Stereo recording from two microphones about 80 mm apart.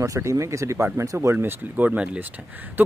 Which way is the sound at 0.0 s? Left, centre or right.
Right.